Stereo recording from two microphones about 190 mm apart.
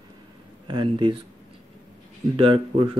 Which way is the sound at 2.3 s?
25° right (ahead or behind).